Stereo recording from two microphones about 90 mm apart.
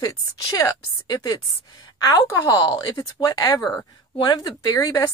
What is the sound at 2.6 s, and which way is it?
A woman's voice, 50° left (ahead or behind).